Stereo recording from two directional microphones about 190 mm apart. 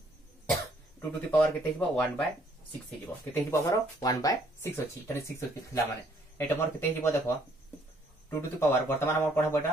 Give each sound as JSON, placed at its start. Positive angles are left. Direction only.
{"t": 0.5, "sound": "speech", "side_deg": 10}
{"t": 3.4, "sound": "speech", "side_deg": 15}
{"t": 6.3, "sound": "speech", "side_deg": 15}